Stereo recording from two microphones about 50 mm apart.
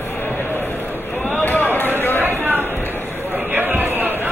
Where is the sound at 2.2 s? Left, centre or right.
Right.